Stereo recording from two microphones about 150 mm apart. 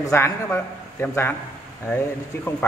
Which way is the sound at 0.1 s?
15° left (ahead or behind).